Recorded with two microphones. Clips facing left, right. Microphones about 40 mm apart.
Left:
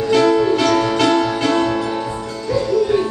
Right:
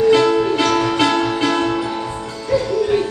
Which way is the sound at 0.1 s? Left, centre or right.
Centre.